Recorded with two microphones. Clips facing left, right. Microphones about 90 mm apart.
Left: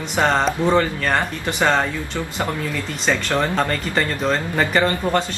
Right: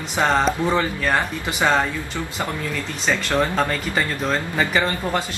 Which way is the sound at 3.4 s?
10° right (ahead or behind).